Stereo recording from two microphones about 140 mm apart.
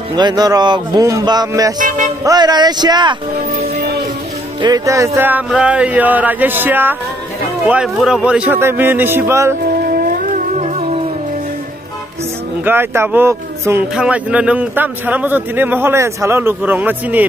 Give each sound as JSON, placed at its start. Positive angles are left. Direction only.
{"t": 0.1, "sound": "music", "side_deg": -30}
{"t": 1.8, "sound": "music", "side_deg": -65}
{"t": 2.2, "sound": "speech", "side_deg": -30}
{"t": 4.6, "sound": "music", "side_deg": -30}
{"t": 5.5, "sound": "a man's voice", "side_deg": -5}
{"t": 9.7, "sound": "music", "side_deg": -90}
{"t": 12.6, "sound": "a man's voice", "side_deg": -15}